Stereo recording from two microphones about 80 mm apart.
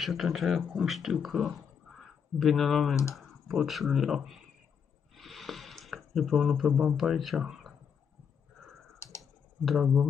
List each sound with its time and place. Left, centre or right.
0.0 s speech: centre
5.1 s a sound: centre
7.0 s speech: centre
9.2 s typing: centre